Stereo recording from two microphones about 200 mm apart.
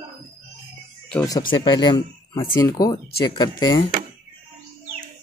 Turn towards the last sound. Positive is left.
turn(degrees=20)  # may be behind; listen again after turning